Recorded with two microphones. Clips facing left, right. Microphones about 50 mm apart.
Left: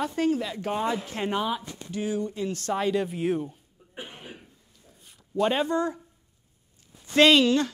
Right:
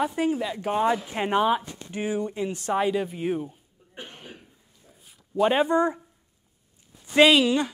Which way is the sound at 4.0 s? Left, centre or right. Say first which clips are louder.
Left 1 dB; centre.